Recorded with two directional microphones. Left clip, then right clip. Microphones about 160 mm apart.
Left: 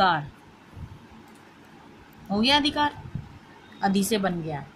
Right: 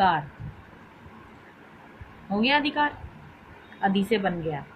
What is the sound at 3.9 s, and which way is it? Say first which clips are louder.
Speech: right 1 dB; 70° left (ahead or behind).